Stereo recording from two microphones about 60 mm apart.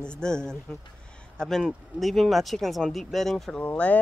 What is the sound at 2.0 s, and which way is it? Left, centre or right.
Speech, centre.